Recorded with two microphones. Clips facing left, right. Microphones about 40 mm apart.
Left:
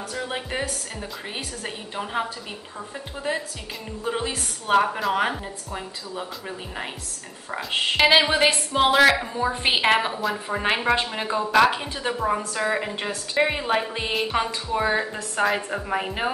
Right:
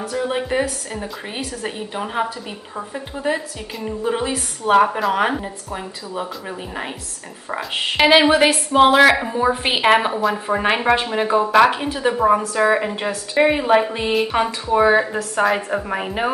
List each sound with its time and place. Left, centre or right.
0.1 s a woman's voice: centre
7.5 s a woman's voice: centre